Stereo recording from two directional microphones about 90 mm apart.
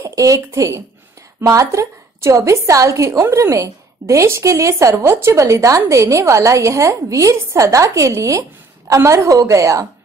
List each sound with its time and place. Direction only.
0.0 s a woman's voice: 35° right (ahead or behind)